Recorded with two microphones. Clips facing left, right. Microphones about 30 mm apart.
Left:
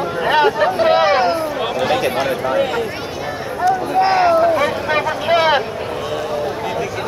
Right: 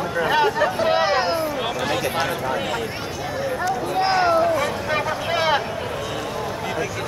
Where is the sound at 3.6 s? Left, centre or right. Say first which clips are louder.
Left 9 dB; centre.